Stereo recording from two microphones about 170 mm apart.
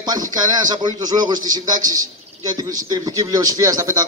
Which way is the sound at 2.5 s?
20° right (ahead or behind).